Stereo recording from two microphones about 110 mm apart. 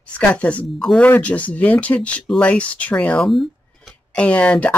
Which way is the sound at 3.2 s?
Centre (ahead or behind).